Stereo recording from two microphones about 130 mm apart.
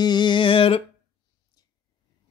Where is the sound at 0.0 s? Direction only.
35° left (ahead or behind).